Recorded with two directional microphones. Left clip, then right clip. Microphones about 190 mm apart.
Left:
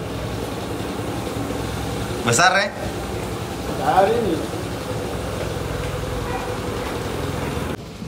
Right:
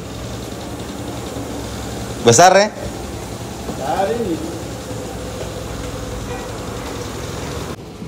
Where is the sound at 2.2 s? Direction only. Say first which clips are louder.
Right 7 dB; 30° right (ahead or behind).